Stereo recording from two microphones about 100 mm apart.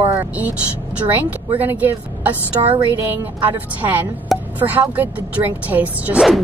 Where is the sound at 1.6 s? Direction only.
20° right (ahead or behind).